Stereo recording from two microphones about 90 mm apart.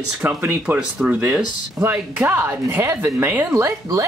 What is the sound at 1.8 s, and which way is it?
Speech, 25° right (ahead or behind).